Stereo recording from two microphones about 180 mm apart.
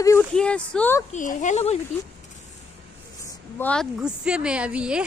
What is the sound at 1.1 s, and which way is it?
Speech, 45° left (ahead or behind).